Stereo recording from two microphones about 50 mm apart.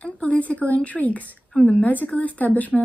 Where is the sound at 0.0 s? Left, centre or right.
Left.